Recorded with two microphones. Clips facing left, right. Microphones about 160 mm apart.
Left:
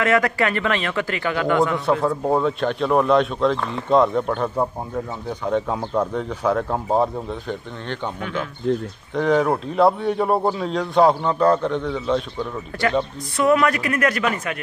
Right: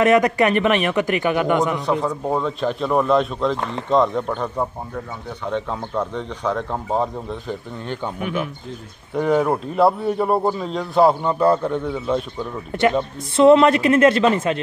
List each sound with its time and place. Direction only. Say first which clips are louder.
0.0 s a man's voice: right 4 dB; 20° right (ahead or behind)
1.9 s speech: left 2 dB; centre (ahead or behind)
12.7 s a man's voice: right 3 dB; 25° right (ahead or behind)